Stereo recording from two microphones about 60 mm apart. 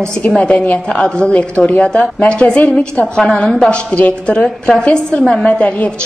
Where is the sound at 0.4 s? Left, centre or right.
Centre.